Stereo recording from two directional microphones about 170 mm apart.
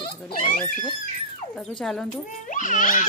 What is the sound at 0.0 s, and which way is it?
Dog, 25° left (ahead or behind).